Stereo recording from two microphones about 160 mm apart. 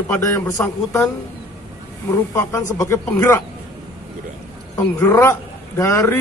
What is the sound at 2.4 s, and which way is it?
Speech, 20° left (ahead or behind).